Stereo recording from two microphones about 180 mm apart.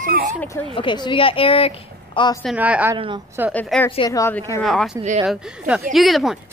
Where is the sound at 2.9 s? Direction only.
25° right (ahead or behind).